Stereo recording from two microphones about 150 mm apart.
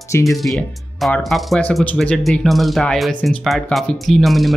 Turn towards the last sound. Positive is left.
turn(degrees=0)  # may be behind; listen again after turning